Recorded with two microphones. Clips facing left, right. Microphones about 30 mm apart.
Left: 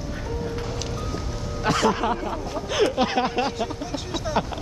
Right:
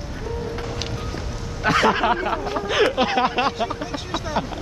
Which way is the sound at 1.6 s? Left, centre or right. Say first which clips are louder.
Right 3 dB; right.